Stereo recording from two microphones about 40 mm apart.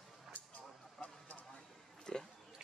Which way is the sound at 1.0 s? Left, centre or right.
Left.